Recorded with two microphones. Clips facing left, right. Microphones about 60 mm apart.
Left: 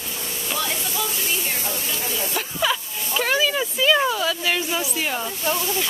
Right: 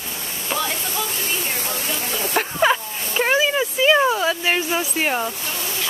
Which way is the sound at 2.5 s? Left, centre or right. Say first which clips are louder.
Right 4 dB; right.